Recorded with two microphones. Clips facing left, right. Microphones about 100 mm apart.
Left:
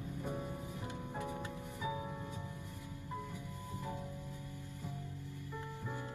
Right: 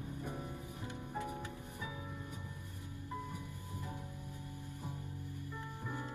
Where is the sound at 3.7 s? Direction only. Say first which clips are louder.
Left 4 dB; 20° left (ahead or behind).